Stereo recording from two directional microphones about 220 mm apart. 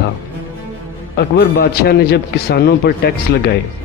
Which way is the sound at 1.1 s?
45° left (ahead or behind).